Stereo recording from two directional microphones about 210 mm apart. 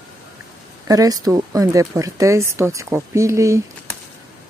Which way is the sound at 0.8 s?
15° right (ahead or behind).